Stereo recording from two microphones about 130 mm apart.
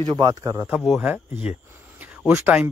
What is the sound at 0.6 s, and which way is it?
Speech, 5° right (ahead or behind).